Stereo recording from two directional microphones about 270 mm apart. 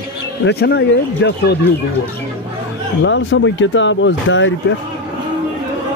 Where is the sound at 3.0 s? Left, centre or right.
Left.